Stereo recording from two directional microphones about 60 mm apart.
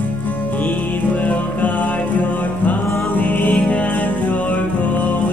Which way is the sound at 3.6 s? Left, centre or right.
Centre.